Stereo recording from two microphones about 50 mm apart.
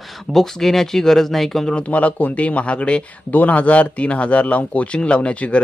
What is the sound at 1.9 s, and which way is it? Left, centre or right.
A man's voice, left.